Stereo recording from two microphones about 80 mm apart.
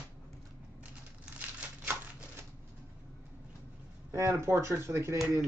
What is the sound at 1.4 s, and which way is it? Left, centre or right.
Crumpling, right.